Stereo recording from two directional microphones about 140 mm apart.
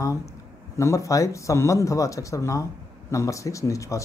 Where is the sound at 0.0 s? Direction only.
20° left (ahead or behind).